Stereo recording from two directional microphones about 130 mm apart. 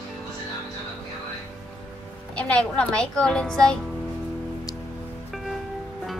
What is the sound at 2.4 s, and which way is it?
A woman's voice, 10° left (ahead or behind).